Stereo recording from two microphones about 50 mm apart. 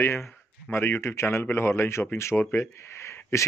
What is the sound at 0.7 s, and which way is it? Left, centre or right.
Speech, left.